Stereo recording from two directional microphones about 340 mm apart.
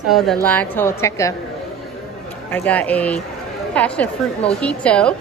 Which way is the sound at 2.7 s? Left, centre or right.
Centre.